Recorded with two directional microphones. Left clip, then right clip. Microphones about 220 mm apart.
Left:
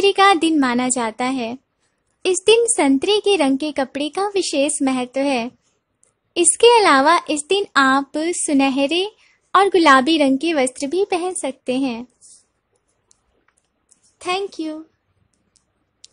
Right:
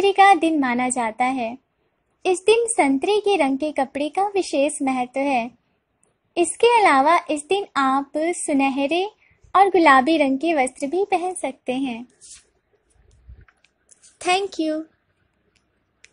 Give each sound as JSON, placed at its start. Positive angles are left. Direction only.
{"t": 0.0, "sound": "a woman's voice", "side_deg": 20}
{"t": 14.1, "sound": "a child's voice", "side_deg": -5}